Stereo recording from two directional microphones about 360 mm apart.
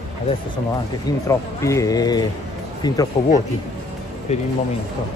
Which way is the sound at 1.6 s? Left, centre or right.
Centre.